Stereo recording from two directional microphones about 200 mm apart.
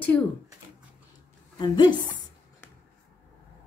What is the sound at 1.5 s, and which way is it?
Speech, 20° left (ahead or behind).